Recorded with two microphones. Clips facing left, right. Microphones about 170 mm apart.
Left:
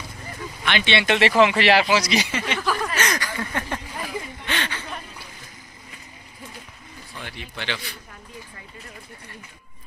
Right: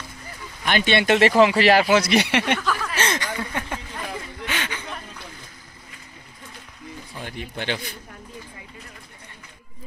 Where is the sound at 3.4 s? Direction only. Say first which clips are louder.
Left 1 dB; 10° right (ahead or behind).